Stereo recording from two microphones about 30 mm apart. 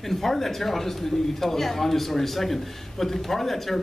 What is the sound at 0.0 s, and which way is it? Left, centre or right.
A man's voice, centre.